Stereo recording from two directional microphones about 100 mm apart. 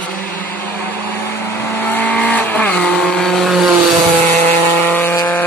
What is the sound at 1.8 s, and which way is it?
Vehicle, 15° left (ahead or behind).